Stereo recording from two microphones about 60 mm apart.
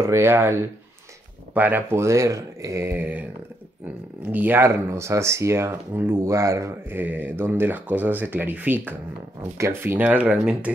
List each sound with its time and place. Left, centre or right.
0.0 s speech: right
1.5 s speech: right
1.9 s speech: right
2.9 s speech: right
4.6 s speech: right
6.9 s speech: right
9.4 s speech: right
9.9 s speech: right